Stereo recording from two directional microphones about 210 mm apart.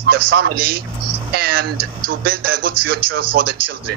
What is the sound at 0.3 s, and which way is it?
Speech, 45° right (ahead or behind).